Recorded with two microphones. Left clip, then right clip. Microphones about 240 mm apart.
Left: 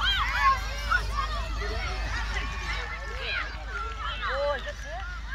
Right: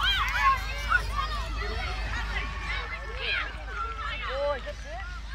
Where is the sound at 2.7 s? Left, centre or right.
Right.